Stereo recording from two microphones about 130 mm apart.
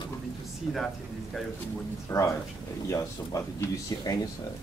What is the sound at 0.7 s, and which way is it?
Speech, 5° left (ahead or behind).